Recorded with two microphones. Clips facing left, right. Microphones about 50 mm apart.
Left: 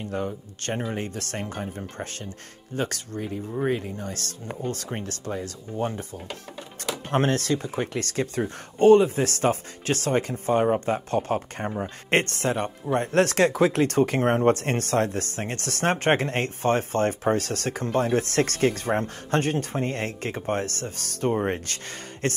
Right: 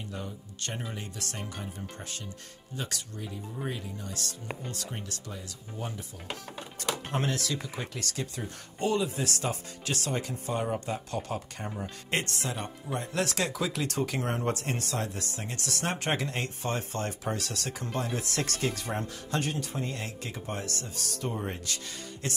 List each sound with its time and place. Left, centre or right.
0.0 s speech: left
7.1 s speech: left